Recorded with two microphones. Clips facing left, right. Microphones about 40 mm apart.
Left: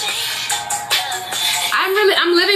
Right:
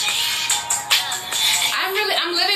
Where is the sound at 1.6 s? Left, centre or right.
Left.